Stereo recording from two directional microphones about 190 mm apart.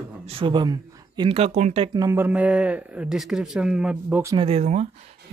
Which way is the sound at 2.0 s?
15° right (ahead or behind).